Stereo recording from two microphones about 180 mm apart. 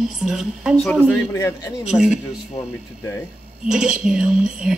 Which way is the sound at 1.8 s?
5° right (ahead or behind).